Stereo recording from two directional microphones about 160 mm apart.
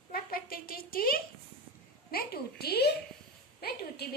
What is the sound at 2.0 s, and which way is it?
A woman's voice, 70° left (ahead or behind).